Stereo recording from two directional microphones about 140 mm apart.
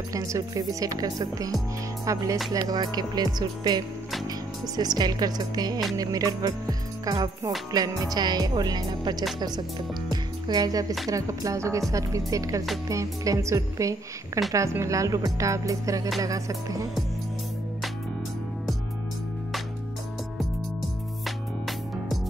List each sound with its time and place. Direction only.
0.1 s a woman's voice: 25° right (ahead or behind)
10.5 s a woman's voice: 25° right (ahead or behind)